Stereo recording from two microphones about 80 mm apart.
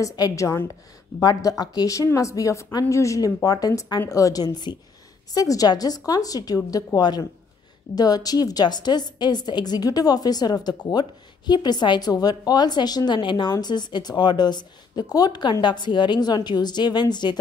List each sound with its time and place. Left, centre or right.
0.2 s a woman's voice: left
13.6 s a woman's voice: left